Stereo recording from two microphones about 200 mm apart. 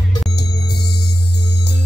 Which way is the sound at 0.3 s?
55° left (ahead or behind).